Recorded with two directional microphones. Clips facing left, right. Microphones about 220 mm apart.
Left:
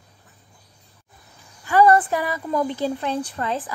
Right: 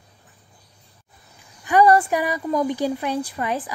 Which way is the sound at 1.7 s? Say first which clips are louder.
Even; 15° right (ahead or behind).